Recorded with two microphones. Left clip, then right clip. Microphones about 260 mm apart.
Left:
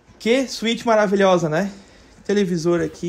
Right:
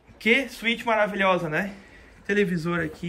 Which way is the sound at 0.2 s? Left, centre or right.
Centre.